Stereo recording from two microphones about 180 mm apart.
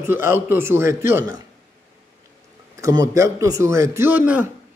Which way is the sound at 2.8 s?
20° right (ahead or behind).